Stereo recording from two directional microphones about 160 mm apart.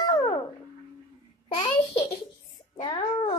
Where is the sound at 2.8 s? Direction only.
30° left (ahead or behind).